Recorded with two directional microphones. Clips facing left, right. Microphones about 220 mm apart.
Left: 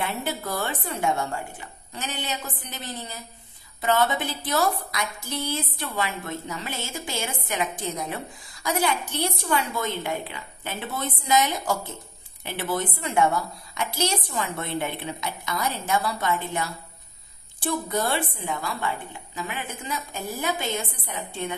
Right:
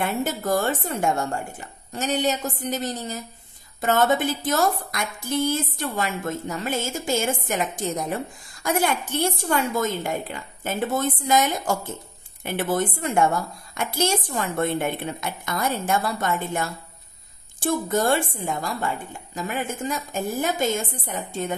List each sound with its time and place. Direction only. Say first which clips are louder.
0.0 s a woman's voice: right 4 dB; 45° right (ahead or behind)